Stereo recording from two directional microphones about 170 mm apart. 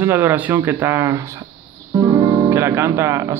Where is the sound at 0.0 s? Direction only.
10° right (ahead or behind).